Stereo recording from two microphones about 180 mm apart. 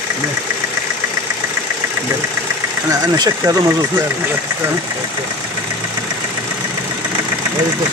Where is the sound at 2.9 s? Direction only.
20° right (ahead or behind).